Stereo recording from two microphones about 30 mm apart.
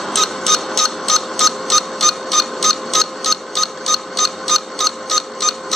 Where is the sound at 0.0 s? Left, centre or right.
Centre.